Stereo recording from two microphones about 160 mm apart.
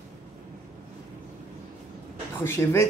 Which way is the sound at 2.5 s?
15° left (ahead or behind).